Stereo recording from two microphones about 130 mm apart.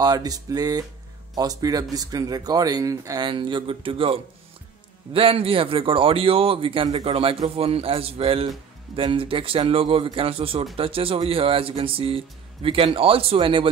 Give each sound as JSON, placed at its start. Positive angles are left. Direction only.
{"t": 0.0, "sound": "speech", "side_deg": -30}
{"t": 3.3, "sound": "speech", "side_deg": -35}
{"t": 7.1, "sound": "speech", "side_deg": -50}